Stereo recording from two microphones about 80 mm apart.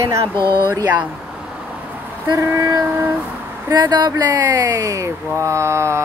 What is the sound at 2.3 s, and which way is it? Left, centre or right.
Speech, right.